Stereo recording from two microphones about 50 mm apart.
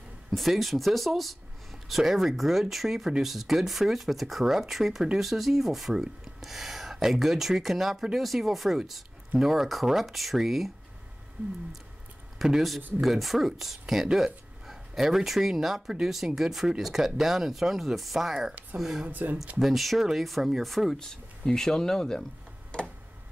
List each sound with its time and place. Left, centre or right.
0.3 s speech: centre
12.4 s speech: centre
19.0 s speech: right
19.6 s speech: centre